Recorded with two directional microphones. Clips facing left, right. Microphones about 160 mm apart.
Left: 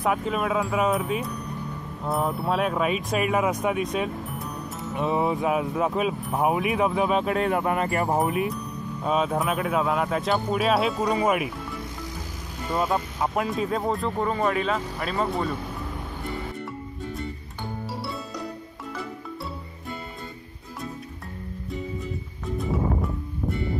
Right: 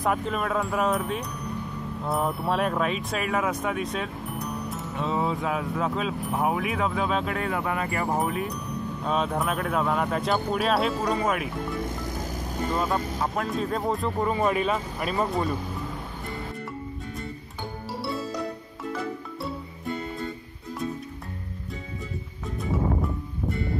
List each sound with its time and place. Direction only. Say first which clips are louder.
0.0 s speech: left 2 dB; 5° left (ahead or behind); by 7.4 s 20° left (ahead or behind)
7.6 s speech: left 4 dB; 35° left (ahead or behind)
8.1 s speech: left 3 dB; 15° left (ahead or behind)
12.7 s speech: left 3 dB; 10° left (ahead or behind)